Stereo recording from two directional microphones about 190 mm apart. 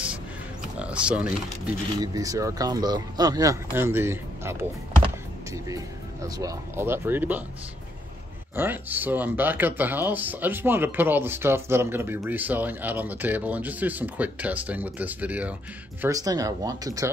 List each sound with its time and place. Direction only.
0.7 s speech: 5° right (ahead or behind)
2.0 s speech: 20° right (ahead or behind)
8.5 s speech: 10° right (ahead or behind)
16.0 s speech: 20° right (ahead or behind)